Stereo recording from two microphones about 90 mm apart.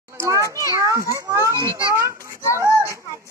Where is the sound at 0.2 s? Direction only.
35° right (ahead or behind).